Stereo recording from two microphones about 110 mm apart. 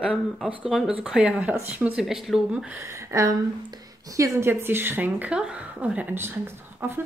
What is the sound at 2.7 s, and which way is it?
A woman's voice, 25° right (ahead or behind).